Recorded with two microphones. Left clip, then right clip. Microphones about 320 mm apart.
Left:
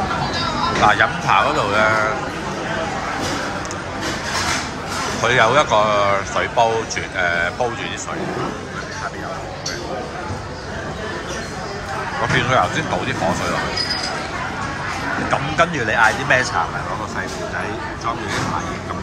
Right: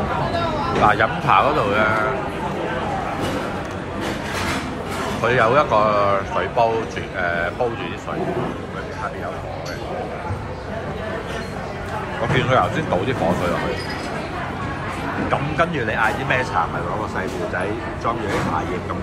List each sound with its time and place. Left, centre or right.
0.8 s speech: centre
5.2 s speech: centre
12.4 s speech: centre
15.5 s speech: centre